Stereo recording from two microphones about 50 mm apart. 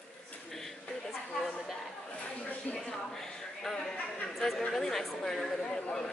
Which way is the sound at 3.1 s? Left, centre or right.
Centre.